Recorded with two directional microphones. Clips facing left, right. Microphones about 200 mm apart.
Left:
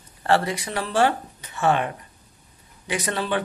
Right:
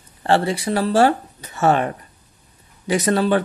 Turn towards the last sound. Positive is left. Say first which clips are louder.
# right 8 dB
turn(degrees=-40)  # may be behind; listen again after turning